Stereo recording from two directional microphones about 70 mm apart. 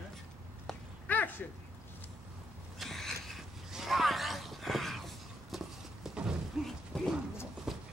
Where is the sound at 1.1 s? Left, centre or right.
Left.